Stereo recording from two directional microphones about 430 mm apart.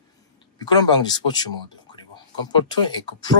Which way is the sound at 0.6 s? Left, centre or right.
Centre.